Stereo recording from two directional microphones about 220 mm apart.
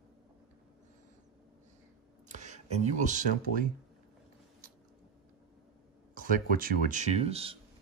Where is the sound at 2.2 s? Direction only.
35° right (ahead or behind).